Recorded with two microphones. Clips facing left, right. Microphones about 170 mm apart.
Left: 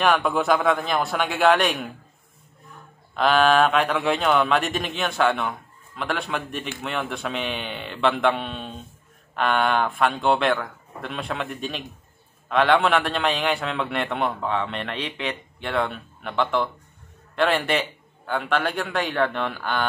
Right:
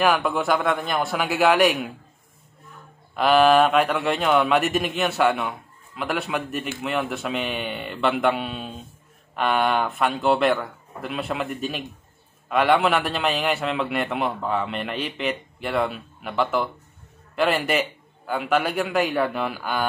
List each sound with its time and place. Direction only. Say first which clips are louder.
0.0 s speech: even; centre (ahead or behind)
3.2 s a man's voice: right 2 dB; 5° right (ahead or behind)